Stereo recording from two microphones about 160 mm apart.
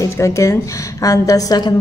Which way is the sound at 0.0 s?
20° left (ahead or behind).